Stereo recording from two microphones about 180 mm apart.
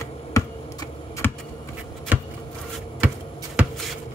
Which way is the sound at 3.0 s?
10° right (ahead or behind).